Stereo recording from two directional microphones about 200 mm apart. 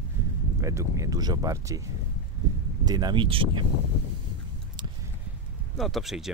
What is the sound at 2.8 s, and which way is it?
Speech, 20° right (ahead or behind).